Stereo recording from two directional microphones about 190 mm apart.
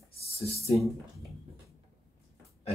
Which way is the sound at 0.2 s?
30° left (ahead or behind).